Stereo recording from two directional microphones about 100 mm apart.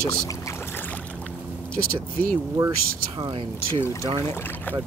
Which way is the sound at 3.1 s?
55° right (ahead or behind).